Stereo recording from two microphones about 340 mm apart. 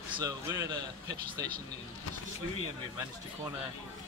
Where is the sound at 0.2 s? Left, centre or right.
Centre.